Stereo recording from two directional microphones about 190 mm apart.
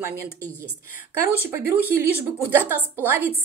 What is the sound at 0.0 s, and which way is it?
Speech, 15° right (ahead or behind).